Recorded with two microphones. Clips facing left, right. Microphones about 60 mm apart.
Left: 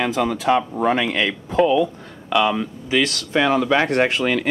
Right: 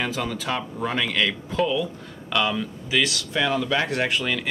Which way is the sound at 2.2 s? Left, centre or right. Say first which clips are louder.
Left 6 dB; centre.